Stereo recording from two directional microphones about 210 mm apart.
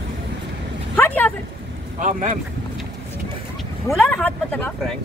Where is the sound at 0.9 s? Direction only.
10° left (ahead or behind).